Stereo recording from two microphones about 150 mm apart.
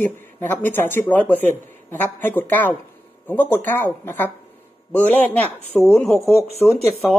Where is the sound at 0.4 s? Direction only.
10° left (ahead or behind).